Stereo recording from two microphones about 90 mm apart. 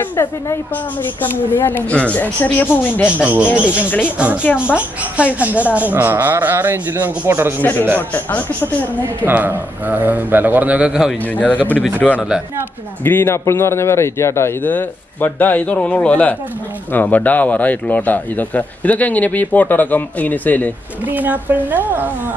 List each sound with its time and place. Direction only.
0.0 s a woman's voice: 25° left (ahead or behind)
3.1 s a woman's voice: 15° right (ahead or behind)
8.1 s a woman's voice: 20° left (ahead or behind)
9.2 s a woman's voice: 20° right (ahead or behind)
11.3 s a man's voice: 15° left (ahead or behind)
12.0 s speech: 5° left (ahead or behind)
13.0 s a woman's voice: 25° left (ahead or behind)
14.6 s a man's voice: 20° left (ahead or behind)
21.1 s a woman's voice: 20° right (ahead or behind)